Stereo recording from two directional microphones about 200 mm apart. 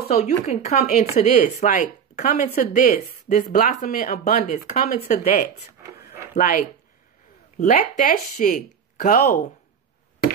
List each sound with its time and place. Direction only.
0.1 s speech: 30° left (ahead or behind)
5.7 s a sound: 15° right (ahead or behind)
6.3 s a woman's voice: 40° left (ahead or behind)